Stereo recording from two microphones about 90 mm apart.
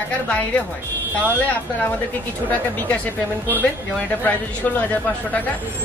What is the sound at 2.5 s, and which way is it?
Speech, 20° left (ahead or behind).